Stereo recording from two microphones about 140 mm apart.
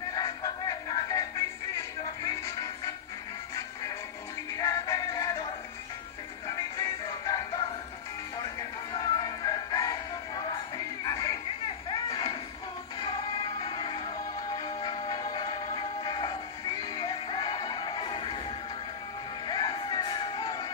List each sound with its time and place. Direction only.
0.1 s music: 30° left (ahead or behind)
2.2 s music: 25° left (ahead or behind)
4.6 s music: 25° left (ahead or behind)
8.9 s music: 30° left (ahead or behind)
11.1 s chatter: 30° left (ahead or behind)
11.9 s a sound: 35° left (ahead or behind)
13.0 s music: 30° left (ahead or behind)
19.4 s music: 30° left (ahead or behind)